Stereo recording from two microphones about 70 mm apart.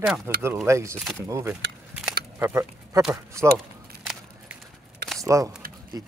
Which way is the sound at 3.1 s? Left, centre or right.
Right.